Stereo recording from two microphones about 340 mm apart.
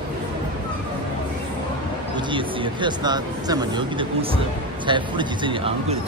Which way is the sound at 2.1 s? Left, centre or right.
Centre.